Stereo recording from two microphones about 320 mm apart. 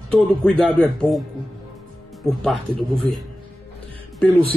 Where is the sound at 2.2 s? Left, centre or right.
Centre.